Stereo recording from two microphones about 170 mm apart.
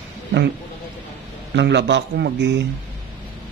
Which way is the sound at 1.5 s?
90° right.